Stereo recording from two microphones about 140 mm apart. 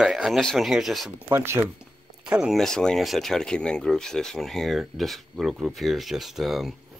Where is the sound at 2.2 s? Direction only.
5° right (ahead or behind).